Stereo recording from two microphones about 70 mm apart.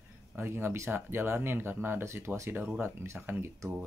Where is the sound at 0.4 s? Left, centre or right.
Right.